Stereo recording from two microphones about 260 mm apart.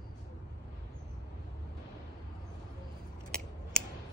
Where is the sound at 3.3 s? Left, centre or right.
Centre.